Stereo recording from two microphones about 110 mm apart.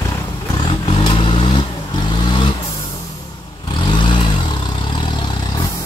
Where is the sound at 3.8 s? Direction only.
45° left (ahead or behind).